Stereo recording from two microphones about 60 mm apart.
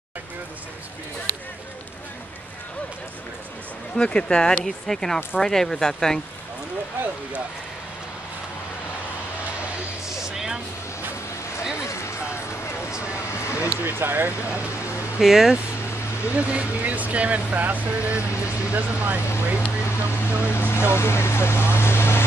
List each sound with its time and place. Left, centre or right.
3.9 s speech: centre
10.2 s vehicle: centre
11.7 s a sound: left
13.8 s speech: right
14.7 s a sound: left
15.1 s speech: centre
15.9 s vehicle: left
16.3 s speech: right
18.3 s speech: left
18.7 s speech: right
19.8 s speech: left